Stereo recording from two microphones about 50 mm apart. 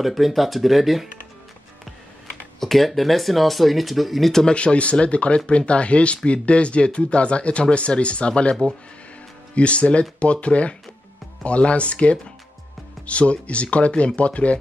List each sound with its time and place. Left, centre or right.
0.0 s speech: centre
2.6 s speech: centre
4.6 s speech: left